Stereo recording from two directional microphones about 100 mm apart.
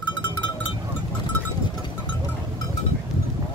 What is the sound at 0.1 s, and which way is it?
Cowbell, 50° left (ahead or behind).